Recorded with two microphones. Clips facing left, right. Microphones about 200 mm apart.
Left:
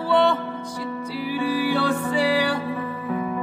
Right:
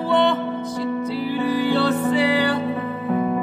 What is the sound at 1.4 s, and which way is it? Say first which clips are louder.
Music: right 2 dB; 10° left (ahead or behind).